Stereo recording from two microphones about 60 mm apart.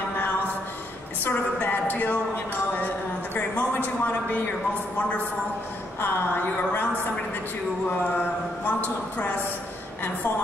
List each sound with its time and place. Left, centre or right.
1.2 s a sound: left
3.3 s a man's voice: left
5.9 s a man's voice: left
8.2 s a man's voice: left